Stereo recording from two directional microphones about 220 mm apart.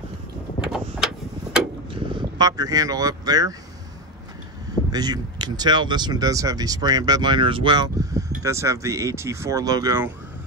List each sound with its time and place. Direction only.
0.6 s a sound: centre (ahead or behind)
2.0 s speech: 20° right (ahead or behind)
4.9 s speech: 20° right (ahead or behind)